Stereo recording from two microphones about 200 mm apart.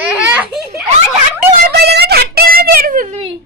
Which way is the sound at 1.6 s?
55° right (ahead or behind).